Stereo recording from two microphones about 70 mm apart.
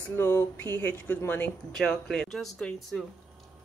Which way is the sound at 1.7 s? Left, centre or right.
Centre.